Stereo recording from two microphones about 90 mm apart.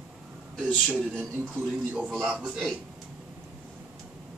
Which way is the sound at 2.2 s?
15° right (ahead or behind).